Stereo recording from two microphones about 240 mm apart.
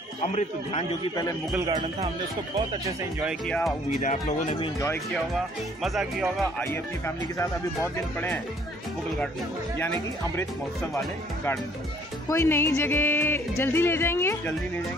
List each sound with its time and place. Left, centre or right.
0.2 s a man's voice: left
1.6 s speech: centre
3.2 s speech: centre
4.0 s speech: left
5.3 s speech: centre
7.3 s music: centre
9.8 s music: centre
12.3 s music: centre